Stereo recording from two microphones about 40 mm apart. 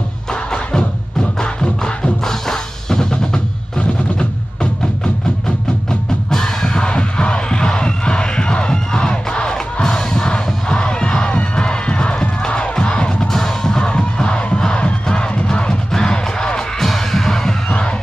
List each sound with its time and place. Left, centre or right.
0.3 s music: centre
2.2 s drum kit: centre
6.3 s music: centre
13.3 s music: centre
16.8 s music: centre